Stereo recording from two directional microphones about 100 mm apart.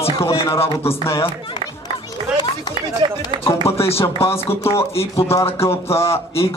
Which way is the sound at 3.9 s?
25° left (ahead or behind).